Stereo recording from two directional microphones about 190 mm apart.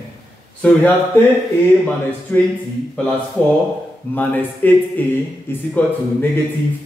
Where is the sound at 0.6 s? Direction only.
5° left (ahead or behind).